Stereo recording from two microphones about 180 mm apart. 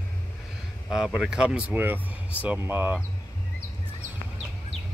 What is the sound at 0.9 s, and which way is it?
Speech, 5° right (ahead or behind).